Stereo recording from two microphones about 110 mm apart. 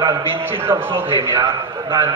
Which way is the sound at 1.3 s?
30° right (ahead or behind).